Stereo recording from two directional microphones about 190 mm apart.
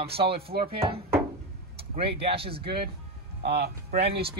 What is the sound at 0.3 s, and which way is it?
Speech, 55° right (ahead or behind).